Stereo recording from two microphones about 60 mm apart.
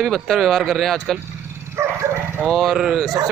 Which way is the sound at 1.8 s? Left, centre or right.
Right.